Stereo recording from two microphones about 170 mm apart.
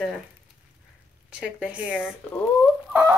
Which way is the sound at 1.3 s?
5° right (ahead or behind).